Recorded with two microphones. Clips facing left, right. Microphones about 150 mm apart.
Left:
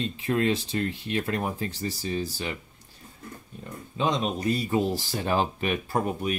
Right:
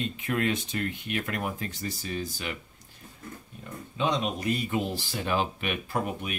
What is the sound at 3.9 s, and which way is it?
Speech, 35° left (ahead or behind).